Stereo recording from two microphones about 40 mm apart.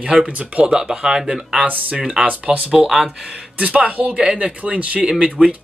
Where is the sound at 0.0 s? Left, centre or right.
Centre.